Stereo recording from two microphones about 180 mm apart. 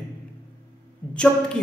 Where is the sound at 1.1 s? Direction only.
5° left (ahead or behind).